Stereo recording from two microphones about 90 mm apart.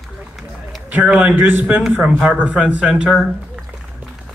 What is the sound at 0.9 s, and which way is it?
Speech, 15° right (ahead or behind).